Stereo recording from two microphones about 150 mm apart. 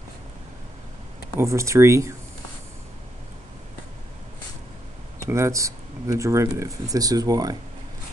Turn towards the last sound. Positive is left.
turn(degrees=-25)  # may be behind; listen again after turning